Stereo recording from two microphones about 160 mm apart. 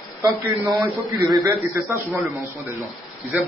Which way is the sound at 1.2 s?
20° right (ahead or behind).